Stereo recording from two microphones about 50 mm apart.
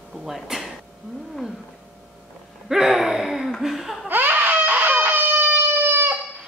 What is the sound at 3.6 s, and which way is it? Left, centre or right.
Laughter, centre.